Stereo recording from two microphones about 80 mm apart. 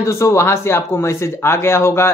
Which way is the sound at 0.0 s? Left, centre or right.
Left.